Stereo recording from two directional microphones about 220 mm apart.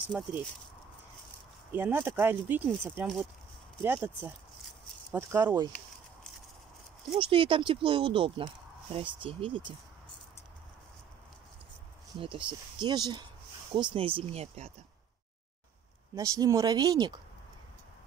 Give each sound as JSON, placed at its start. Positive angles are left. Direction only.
{"t": 0.0, "sound": "speech", "side_deg": -10}
{"t": 1.7, "sound": "speech", "side_deg": -10}
{"t": 7.2, "sound": "speech", "side_deg": -25}
{"t": 12.2, "sound": "speech", "side_deg": -25}
{"t": 16.2, "sound": "speech", "side_deg": -15}